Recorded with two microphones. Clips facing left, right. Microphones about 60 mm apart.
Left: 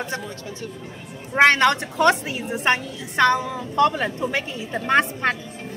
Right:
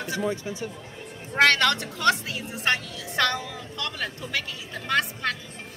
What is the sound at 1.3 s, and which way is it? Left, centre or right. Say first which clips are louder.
A woman's voice: left 4 dB; left.